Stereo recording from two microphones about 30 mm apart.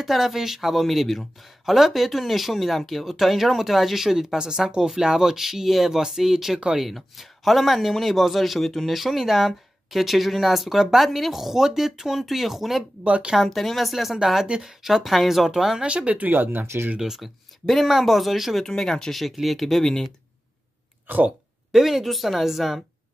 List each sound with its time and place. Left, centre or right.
0.0 s speech: centre
13.0 s speech: right
13.4 s speech: centre
15.8 s speech: right
16.1 s speech: right
17.2 s speech: centre
18.6 s speech: centre
19.4 s speech: centre
19.8 s speech: centre
21.1 s speech: right
21.7 s speech: centre